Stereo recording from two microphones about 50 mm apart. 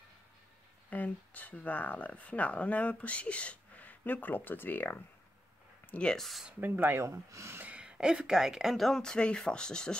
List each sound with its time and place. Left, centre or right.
0.8 s speech: left
5.8 s a sound: left
6.1 s speech: centre
6.6 s speech: right
7.0 s speech: right
7.6 s a woman's voice: right
8.7 s speech: centre
9.0 s speech: centre